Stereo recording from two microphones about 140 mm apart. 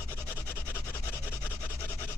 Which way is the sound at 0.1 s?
15° left (ahead or behind).